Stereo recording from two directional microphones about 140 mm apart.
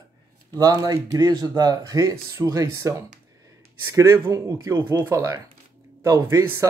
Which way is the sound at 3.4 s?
20° right (ahead or behind).